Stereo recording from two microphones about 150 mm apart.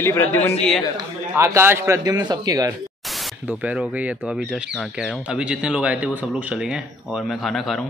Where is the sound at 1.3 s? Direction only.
15° right (ahead or behind).